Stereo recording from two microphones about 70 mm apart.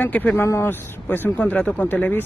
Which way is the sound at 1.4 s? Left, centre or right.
Centre.